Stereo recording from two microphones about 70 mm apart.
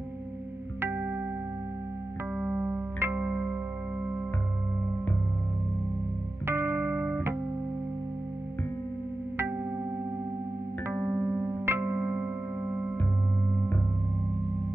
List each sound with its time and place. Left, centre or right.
0.9 s music: right
2.3 s music: right
6.4 s music: right
10.9 s music: centre
11.6 s music: right